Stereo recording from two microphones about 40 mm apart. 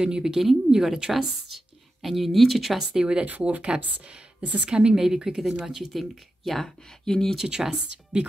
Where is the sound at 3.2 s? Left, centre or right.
Right.